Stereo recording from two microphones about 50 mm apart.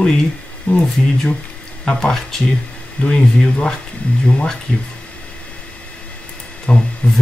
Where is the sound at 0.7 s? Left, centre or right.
Left.